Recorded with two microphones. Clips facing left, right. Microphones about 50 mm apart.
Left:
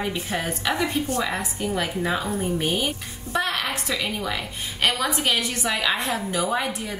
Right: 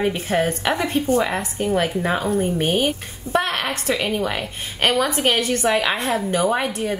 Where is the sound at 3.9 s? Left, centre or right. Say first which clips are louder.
Right 5 dB; right.